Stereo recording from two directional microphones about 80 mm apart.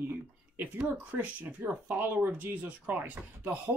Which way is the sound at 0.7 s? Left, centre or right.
Centre.